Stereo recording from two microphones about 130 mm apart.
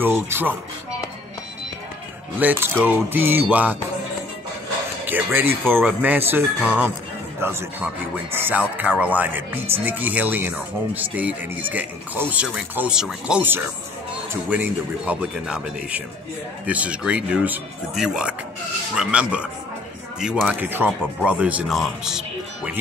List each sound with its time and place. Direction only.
0.0 s speech: 15° right (ahead or behind)
2.3 s speech: 15° right (ahead or behind)
5.0 s speech: 15° right (ahead or behind)